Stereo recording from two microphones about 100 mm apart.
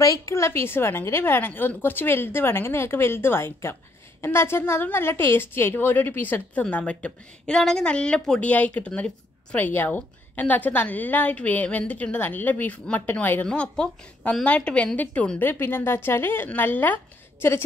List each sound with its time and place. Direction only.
0.0 s a woman's voice: 35° left (ahead or behind)